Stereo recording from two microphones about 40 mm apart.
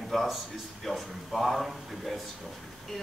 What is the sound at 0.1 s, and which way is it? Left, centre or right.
A woman's voice, centre.